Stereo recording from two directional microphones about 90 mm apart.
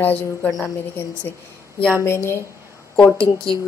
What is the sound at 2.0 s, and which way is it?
Speech, 30° left (ahead or behind).